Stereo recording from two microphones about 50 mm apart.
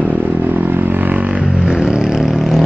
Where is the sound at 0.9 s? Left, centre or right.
Right.